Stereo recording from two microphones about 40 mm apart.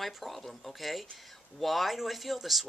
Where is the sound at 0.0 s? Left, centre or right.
Centre.